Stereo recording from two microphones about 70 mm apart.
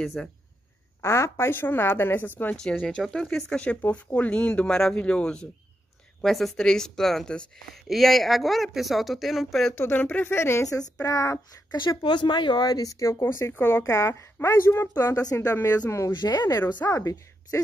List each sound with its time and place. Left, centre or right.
0.2 s speech: centre
1.0 s speech: left
3.0 s speech: centre
6.2 s speech: centre
9.8 s speech: left
11.7 s speech: left
13.2 s speech: left
13.9 s speech: left
15.3 s speech: left
16.1 s speech: left
16.9 s a woman's voice: left